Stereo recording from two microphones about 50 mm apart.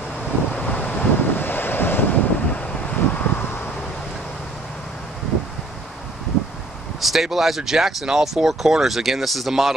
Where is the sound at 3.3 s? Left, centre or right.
Left.